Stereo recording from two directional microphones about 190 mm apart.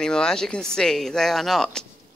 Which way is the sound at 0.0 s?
5° left (ahead or behind).